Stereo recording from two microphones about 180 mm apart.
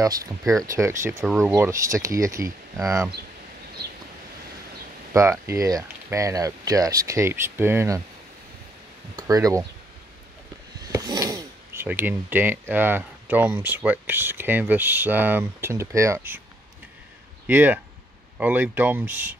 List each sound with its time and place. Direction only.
0.0 s speech: 20° right (ahead or behind)
5.1 s speech: 15° right (ahead or behind)
9.1 s speech: 20° right (ahead or behind)
10.9 s speech: 20° right (ahead or behind)
17.5 s speech: 10° right (ahead or behind)